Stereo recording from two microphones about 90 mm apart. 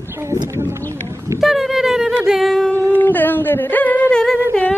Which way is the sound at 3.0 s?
20° left (ahead or behind).